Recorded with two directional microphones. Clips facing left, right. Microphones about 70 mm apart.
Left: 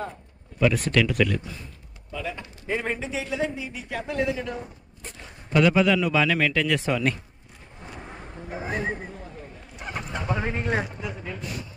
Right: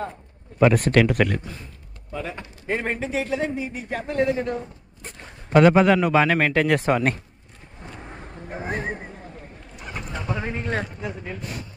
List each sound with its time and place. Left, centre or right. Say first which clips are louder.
0.6 s a man's voice: right 5 dB; right
7.8 s a sound: right 1 dB; centre
8.6 s a man's voice: even; right
9.8 s horse: left 1 dB; left
10.4 s a man's voice: even; centre
11.0 s a man's voice: right 2 dB; right